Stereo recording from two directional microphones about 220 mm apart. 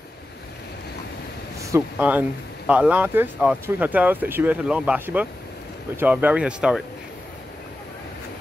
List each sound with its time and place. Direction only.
1.6 s speech: 10° right (ahead or behind)